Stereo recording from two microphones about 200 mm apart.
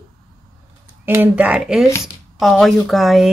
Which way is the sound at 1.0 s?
10° right (ahead or behind).